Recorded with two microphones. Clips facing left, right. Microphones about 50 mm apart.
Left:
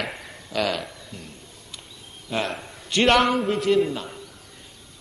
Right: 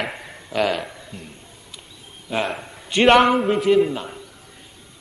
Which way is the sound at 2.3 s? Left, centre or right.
Centre.